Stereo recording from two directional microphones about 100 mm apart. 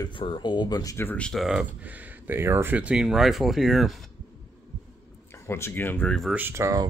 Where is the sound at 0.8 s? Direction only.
35° left (ahead or behind).